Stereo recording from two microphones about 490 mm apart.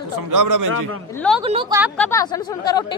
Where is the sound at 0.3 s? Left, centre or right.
Right.